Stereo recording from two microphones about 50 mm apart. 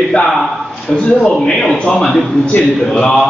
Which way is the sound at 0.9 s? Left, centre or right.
Centre.